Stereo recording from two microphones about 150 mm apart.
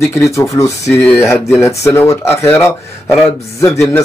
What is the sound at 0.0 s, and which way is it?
Speech, 20° left (ahead or behind).